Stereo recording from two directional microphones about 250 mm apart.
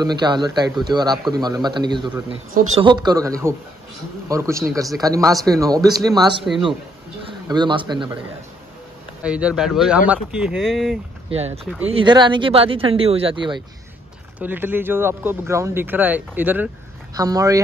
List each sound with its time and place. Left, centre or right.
0.0 s speech: centre
7.4 s speech: centre
9.2 s speech: centre
11.3 s speech: right
14.4 s speech: centre